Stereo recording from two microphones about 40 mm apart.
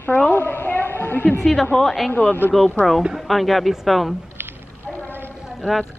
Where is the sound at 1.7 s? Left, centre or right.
Left.